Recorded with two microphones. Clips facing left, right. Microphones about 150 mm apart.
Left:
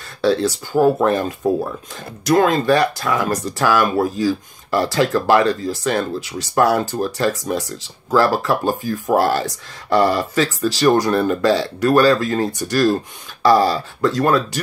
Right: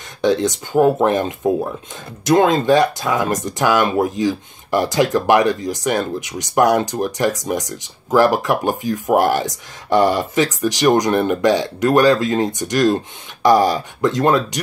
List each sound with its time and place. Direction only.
0.2 s speech: 20° right (ahead or behind)